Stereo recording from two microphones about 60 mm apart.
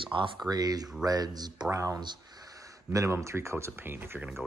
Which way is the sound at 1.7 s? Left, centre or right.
Right.